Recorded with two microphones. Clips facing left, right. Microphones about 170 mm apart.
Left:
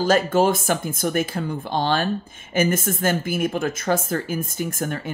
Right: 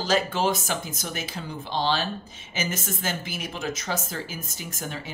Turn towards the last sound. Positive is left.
turn(degrees=50)  # may be behind; listen again after turning